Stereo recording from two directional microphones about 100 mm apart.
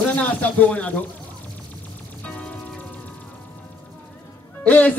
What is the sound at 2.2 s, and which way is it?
Music, 15° left (ahead or behind).